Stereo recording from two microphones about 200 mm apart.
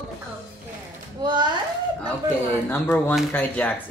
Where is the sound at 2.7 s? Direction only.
10° left (ahead or behind).